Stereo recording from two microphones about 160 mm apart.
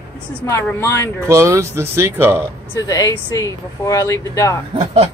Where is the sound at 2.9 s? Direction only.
20° left (ahead or behind).